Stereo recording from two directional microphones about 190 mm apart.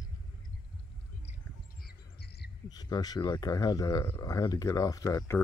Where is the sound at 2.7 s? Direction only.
20° left (ahead or behind).